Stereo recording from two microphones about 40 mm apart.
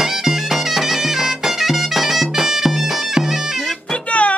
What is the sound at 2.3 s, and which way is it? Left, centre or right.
Bagpipes, centre.